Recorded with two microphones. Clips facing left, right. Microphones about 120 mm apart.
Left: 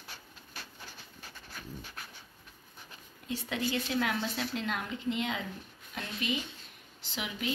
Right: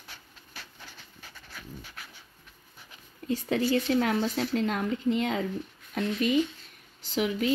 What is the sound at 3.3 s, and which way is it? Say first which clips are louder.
Speech: right 8 dB; 40° right (ahead or behind).